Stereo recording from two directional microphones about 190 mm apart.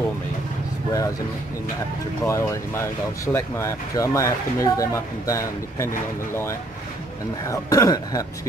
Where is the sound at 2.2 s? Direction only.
15° left (ahead or behind).